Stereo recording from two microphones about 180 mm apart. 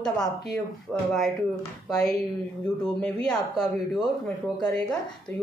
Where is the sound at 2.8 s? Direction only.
5° left (ahead or behind).